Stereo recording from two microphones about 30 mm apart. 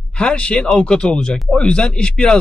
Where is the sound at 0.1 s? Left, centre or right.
Left.